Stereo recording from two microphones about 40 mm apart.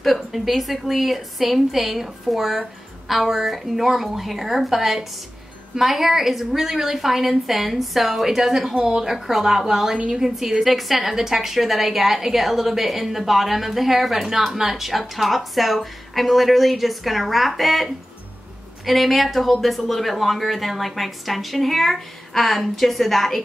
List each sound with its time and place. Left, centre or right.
0.0 s a woman's voice: centre
8.7 s a woman's voice: right
9.0 s a woman's voice: centre
9.9 s a woman's voice: right
10.2 s a woman's voice: centre
18.9 s a woman's voice: centre